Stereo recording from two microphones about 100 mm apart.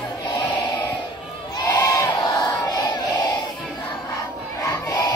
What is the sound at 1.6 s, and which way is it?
Crowd, 35° left (ahead or behind).